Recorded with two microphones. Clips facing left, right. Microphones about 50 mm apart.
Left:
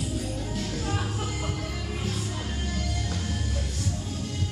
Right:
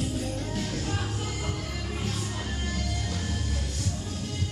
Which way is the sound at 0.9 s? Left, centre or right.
Centre.